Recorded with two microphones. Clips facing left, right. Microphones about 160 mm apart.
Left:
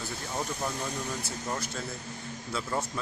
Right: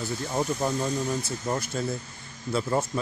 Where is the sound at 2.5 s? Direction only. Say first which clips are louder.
Right 7 dB; 25° right (ahead or behind).